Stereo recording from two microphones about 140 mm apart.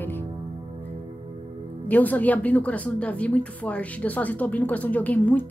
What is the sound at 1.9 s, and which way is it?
A woman's voice, 10° left (ahead or behind).